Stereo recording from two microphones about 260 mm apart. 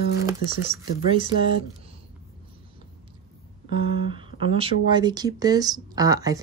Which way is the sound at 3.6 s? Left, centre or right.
Centre.